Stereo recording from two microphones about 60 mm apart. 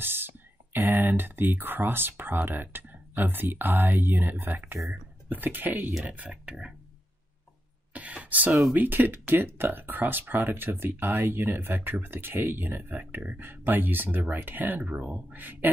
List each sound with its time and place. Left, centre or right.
0.0 s speech: right
7.9 s a sound: right
8.7 s speech: right